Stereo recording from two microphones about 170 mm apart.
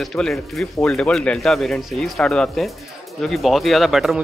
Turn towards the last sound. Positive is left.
turn(degrees=0)  # may be behind; listen again after turning